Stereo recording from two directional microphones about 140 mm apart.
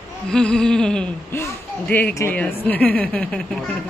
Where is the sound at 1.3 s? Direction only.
15° left (ahead or behind).